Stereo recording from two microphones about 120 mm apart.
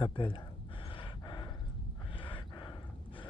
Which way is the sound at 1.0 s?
35° left (ahead or behind).